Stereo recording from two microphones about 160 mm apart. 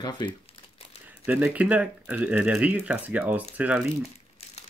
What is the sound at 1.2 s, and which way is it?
Speech, 10° right (ahead or behind).